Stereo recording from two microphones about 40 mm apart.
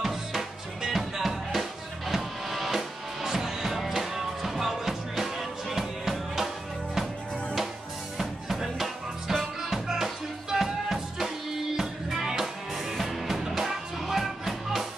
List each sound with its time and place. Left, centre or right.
0.0 s music: centre
8.2 s music: centre